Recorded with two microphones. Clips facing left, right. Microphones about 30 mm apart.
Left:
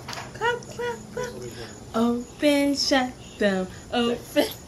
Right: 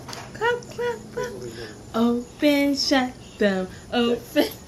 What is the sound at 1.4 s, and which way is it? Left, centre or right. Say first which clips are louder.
A woman's voice: right 2 dB; centre.